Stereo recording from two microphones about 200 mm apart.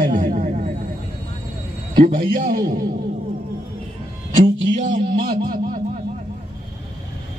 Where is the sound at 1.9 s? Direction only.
45° right (ahead or behind).